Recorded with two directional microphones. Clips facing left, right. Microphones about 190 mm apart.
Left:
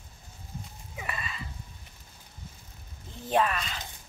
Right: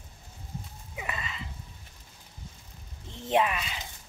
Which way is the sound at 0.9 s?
20° right (ahead or behind).